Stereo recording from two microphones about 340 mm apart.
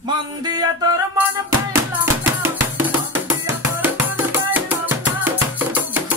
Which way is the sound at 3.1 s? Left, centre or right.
Centre.